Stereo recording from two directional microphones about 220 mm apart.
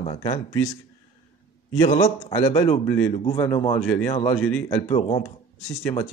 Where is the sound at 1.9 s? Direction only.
35° left (ahead or behind).